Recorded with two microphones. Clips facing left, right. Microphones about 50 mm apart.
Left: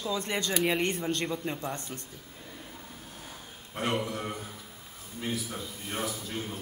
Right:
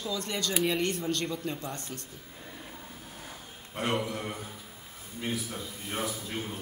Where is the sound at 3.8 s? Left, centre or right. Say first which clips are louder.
Even; centre.